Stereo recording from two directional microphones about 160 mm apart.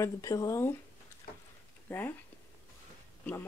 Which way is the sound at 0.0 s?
20° left (ahead or behind).